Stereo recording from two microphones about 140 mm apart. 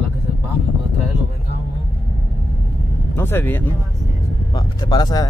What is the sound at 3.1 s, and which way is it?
Speech, 15° left (ahead or behind).